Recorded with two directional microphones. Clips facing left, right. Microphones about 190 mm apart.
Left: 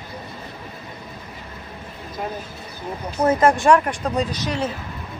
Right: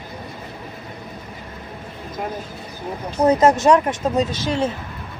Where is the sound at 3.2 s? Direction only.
20° right (ahead or behind).